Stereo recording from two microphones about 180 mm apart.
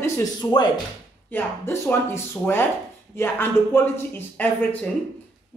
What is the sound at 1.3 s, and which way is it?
Speech, 15° left (ahead or behind).